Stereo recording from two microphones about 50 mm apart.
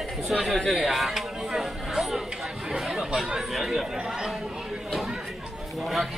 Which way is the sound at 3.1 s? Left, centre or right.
Centre.